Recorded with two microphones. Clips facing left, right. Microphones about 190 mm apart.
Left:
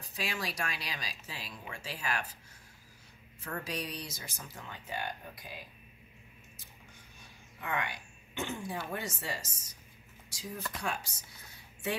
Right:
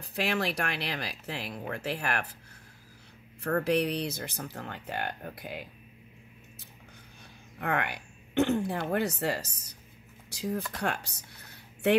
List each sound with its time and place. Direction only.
0.1 s speech: 65° right (ahead or behind)
3.4 s speech: 65° right (ahead or behind)
7.6 s speech: 65° right (ahead or behind)